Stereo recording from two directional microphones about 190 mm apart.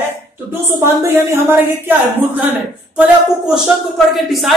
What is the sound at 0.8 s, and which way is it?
Speech, 15° right (ahead or behind).